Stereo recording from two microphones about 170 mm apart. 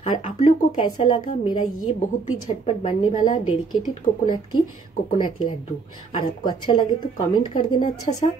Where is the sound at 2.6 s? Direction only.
35° left (ahead or behind).